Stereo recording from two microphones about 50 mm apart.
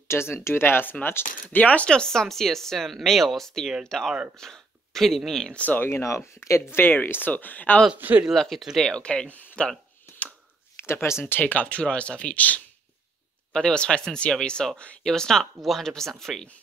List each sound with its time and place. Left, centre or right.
0.1 s speech: left
1.6 s speech: left
1.9 s speech: centre
5.5 s speech: left
5.8 s speech: left
6.7 s speech: left
8.0 s speech: right
8.4 s speech: centre
8.8 s speech: centre
10.9 s speech: left
11.3 s speech: left
11.6 s speech: left
13.5 s speech: centre